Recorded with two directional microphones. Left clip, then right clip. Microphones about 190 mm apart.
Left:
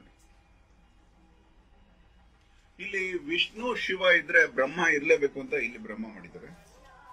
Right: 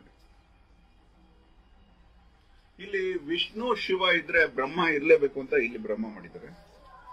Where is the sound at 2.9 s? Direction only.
50° right (ahead or behind).